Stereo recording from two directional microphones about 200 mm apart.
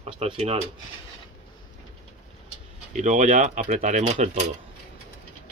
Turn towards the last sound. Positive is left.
turn(degrees=-35)  # may be behind; listen again after turning